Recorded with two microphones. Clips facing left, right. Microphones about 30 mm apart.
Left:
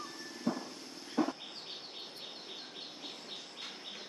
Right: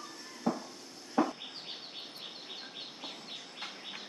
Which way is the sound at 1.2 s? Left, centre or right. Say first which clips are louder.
Right 3 dB; right.